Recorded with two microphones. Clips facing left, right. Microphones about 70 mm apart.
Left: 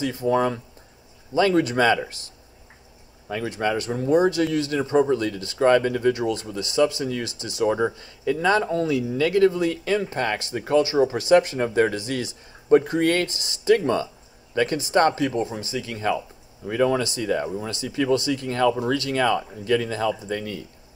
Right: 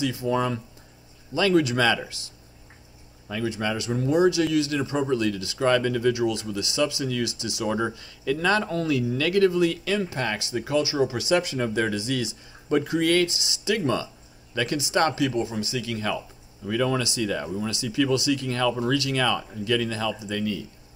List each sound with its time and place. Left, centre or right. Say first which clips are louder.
0.0 s speech: left 3 dB; left
7.6 s speech: left 5 dB; centre; by 12.4 s left
12.6 s speech: left 4 dB; left